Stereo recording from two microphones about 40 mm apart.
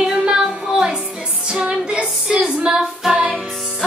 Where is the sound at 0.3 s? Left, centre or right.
Centre.